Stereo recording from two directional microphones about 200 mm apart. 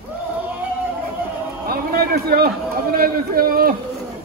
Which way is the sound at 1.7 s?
50° right (ahead or behind).